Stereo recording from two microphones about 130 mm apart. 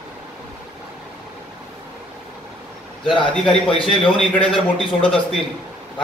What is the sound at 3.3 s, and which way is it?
A man's voice, 5° left (ahead or behind).